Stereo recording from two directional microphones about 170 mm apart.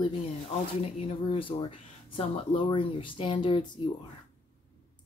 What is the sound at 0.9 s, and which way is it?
Speech, 35° left (ahead or behind).